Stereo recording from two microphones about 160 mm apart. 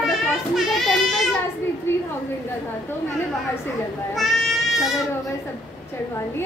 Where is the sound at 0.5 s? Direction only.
Centre (ahead or behind).